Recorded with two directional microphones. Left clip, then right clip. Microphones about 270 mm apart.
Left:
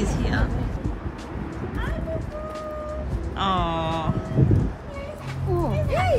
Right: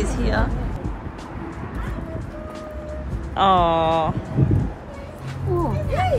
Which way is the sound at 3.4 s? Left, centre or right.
Centre.